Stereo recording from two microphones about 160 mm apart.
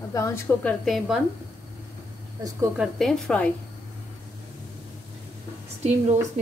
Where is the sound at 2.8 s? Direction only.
Centre (ahead or behind).